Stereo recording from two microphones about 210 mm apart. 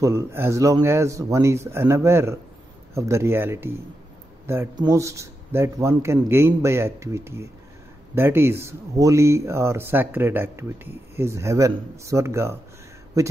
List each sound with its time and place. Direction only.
0.0 s speech: 10° right (ahead or behind)